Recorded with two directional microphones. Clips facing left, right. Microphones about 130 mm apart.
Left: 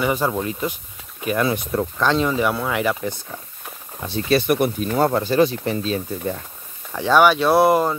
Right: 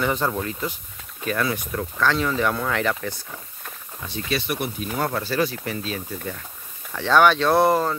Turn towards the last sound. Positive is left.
turn(degrees=15)  # may be behind; listen again after turning